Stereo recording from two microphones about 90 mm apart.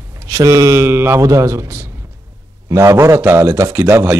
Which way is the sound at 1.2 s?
35° right (ahead or behind).